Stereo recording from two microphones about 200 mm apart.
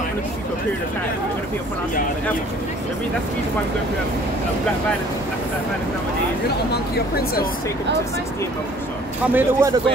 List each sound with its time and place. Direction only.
6.7 s speech: 50° left (ahead or behind)
9.2 s speech: 10° right (ahead or behind)